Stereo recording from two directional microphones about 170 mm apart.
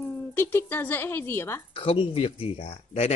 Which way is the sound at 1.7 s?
35° left (ahead or behind).